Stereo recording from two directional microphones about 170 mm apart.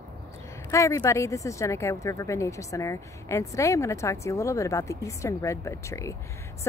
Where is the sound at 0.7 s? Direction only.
15° left (ahead or behind).